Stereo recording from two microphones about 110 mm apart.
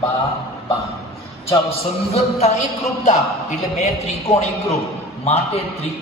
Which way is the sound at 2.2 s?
75° left (ahead or behind).